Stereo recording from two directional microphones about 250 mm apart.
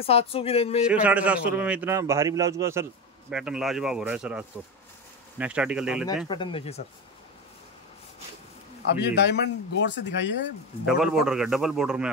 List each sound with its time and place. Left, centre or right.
0.0 s speech: left
0.8 s a man's voice: centre
6.2 s speech: left
9.0 s speech: left
10.9 s a man's voice: centre